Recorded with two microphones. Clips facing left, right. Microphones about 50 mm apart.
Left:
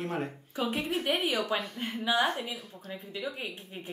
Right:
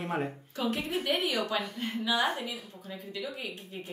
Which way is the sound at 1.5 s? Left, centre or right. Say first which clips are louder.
Left 1 dB; left.